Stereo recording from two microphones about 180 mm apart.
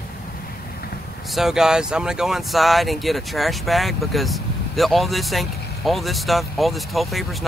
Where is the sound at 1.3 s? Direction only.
Centre (ahead or behind).